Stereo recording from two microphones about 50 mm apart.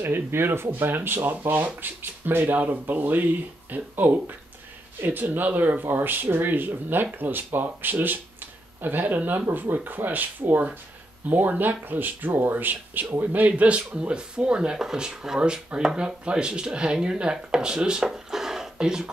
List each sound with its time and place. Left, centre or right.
0.0 s speech: right; by 19.0 s centre